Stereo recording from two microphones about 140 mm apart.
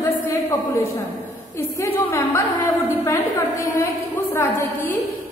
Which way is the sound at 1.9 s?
20° left (ahead or behind).